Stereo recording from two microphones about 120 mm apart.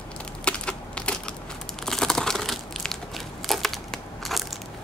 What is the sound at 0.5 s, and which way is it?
Typing, 10° left (ahead or behind).